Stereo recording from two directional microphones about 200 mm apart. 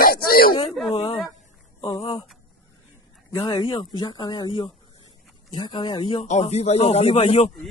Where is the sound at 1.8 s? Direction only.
25° left (ahead or behind).